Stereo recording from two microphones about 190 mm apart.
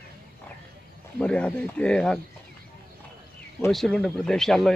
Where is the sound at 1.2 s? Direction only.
5° left (ahead or behind).